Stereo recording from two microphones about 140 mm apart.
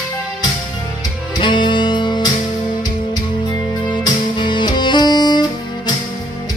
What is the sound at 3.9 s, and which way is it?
Music, 35° left (ahead or behind).